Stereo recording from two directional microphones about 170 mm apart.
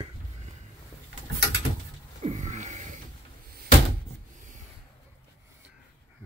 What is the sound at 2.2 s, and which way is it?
Wheeze, 45° right (ahead or behind).